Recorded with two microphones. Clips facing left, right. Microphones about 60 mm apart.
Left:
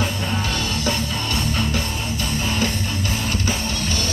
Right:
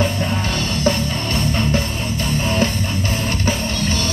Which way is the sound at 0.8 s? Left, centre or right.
Right.